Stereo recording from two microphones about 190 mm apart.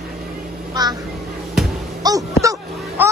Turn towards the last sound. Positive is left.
turn(degrees=-15)  # may be behind; listen again after turning